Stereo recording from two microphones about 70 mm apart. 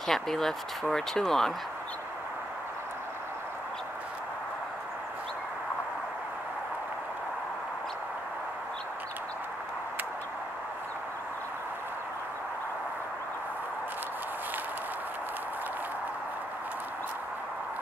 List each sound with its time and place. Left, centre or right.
0.0 s speech: centre